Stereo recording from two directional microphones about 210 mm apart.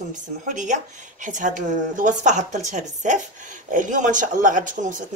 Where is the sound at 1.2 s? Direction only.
40° right (ahead or behind).